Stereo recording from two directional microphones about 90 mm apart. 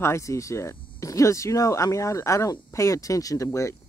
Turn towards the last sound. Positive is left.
turn(degrees=35)  # may be behind; listen again after turning